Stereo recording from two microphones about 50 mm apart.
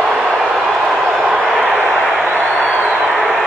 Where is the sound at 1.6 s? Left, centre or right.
Right.